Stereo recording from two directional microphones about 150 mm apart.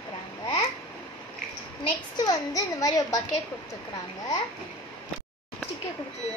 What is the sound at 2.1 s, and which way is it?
A woman's voice, 25° left (ahead or behind).